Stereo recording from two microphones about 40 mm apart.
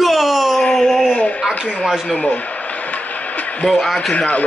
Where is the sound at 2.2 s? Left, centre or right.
Left.